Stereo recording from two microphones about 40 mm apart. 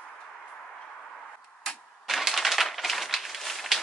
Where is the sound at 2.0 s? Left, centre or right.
Centre.